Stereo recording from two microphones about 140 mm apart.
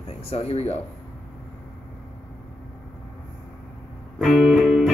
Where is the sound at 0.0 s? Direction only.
45° left (ahead or behind).